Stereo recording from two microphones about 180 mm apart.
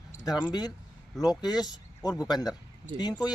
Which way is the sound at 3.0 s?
25° left (ahead or behind).